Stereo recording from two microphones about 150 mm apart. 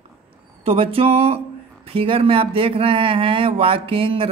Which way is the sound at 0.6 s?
40° right (ahead or behind).